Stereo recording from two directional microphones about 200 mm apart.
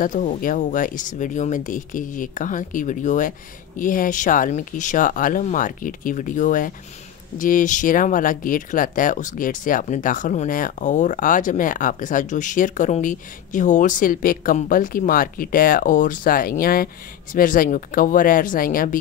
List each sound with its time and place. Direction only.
0.0 s speech: 40° left (ahead or behind)